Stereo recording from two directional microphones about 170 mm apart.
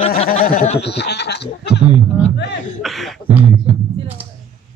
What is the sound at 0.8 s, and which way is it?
Goat, 80° left.